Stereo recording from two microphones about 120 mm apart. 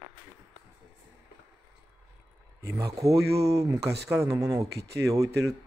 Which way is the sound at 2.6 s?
25° right (ahead or behind).